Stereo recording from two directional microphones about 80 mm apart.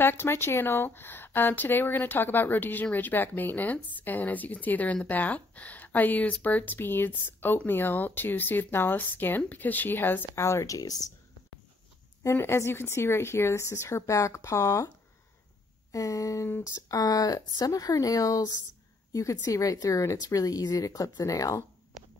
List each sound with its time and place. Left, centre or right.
0.0 s speech: left
12.2 s a woman's voice: left
15.9 s speech: left